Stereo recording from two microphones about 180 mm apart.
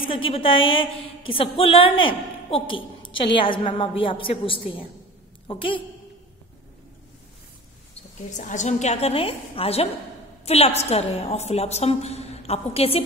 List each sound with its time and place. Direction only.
0.0 s a woman's voice: 30° left (ahead or behind)
8.4 s a woman's voice: 45° left (ahead or behind)